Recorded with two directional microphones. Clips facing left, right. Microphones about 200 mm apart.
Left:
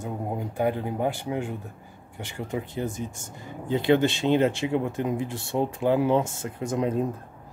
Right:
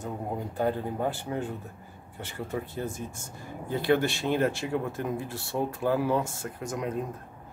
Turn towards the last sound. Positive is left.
turn(degrees=30)  # may be behind; listen again after turning